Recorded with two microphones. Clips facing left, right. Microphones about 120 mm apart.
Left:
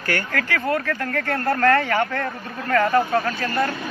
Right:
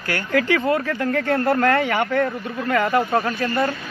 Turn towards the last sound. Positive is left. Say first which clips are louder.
# right 1 dB
turn(degrees=-20)  # may be behind; listen again after turning